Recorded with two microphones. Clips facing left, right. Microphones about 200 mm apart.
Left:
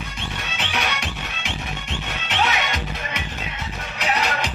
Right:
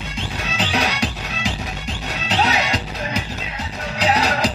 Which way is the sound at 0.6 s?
35° right (ahead or behind).